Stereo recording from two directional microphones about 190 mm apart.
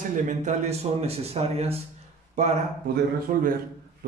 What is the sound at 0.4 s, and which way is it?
Speech, 35° right (ahead or behind).